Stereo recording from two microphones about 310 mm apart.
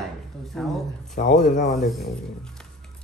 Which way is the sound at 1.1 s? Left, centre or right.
Left.